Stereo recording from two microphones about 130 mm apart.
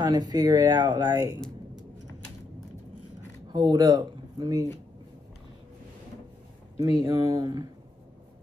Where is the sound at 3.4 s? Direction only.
30° right (ahead or behind).